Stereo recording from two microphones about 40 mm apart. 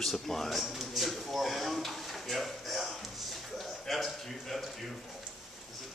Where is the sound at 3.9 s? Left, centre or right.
Centre.